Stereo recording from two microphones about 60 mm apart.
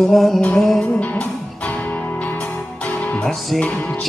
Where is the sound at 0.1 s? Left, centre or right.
Centre.